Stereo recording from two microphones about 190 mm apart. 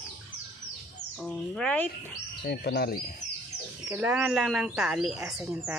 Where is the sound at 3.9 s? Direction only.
10° right (ahead or behind).